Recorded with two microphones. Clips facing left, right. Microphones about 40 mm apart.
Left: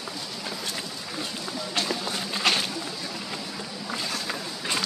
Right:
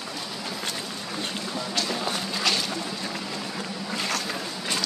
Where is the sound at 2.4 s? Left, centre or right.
Left.